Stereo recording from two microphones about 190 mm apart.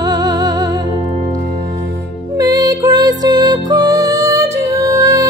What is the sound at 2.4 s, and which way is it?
Music, 20° right (ahead or behind).